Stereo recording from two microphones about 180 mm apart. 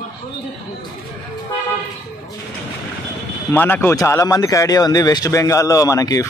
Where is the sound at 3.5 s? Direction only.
10° left (ahead or behind).